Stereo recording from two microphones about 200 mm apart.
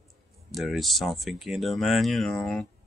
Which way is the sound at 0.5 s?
Centre (ahead or behind).